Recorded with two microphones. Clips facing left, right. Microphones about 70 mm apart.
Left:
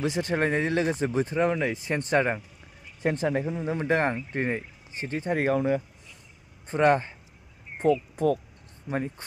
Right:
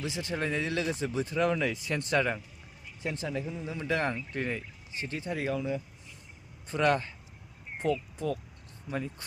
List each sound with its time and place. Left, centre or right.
0.0 s speech: left
3.0 s speech: left
6.7 s speech: left
7.8 s speech: left